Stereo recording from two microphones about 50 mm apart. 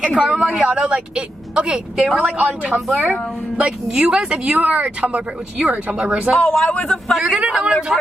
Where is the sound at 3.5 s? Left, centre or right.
Right.